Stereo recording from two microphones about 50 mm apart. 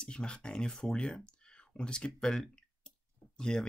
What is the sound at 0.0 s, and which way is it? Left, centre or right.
Speech, centre.